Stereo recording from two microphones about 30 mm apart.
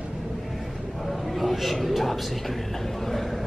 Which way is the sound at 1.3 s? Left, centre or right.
Centre.